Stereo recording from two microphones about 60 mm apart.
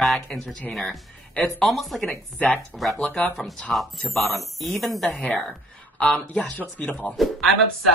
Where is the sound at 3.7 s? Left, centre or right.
Centre.